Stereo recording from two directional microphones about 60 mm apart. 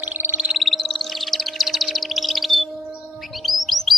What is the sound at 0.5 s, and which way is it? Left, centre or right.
Bird, centre.